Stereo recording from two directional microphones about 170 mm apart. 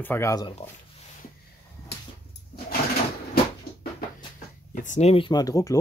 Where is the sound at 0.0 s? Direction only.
15° left (ahead or behind).